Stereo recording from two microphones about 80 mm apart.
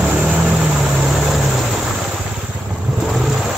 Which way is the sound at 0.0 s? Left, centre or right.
Centre.